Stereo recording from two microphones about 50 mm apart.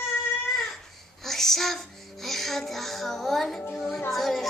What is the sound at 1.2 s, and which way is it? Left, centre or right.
Music, centre.